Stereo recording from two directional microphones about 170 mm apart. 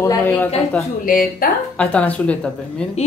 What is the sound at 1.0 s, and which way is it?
Speech, 55° left (ahead or behind).